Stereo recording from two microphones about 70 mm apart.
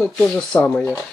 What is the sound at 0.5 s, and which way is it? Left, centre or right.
Speech, centre.